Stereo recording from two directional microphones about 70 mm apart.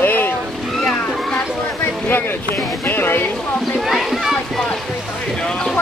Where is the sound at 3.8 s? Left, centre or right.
Centre.